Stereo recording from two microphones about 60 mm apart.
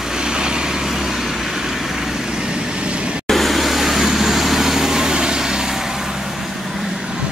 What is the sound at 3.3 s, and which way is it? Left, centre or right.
Vehicle, centre.